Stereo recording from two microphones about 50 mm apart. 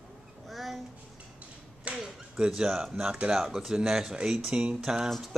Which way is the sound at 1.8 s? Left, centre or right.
Centre.